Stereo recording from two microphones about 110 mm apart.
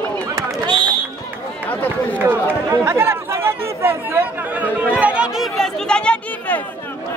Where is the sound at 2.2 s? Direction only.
20° right (ahead or behind).